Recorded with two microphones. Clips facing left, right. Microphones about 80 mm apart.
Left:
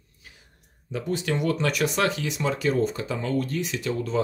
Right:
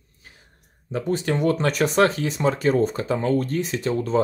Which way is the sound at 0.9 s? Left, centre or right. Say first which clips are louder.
Right 4 dB; right.